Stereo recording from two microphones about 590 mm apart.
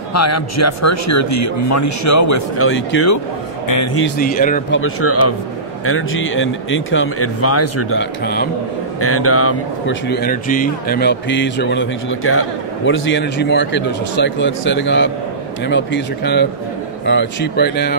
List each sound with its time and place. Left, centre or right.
0.1 s speech: left